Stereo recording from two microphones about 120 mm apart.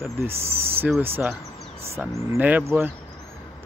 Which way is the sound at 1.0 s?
20° right (ahead or behind).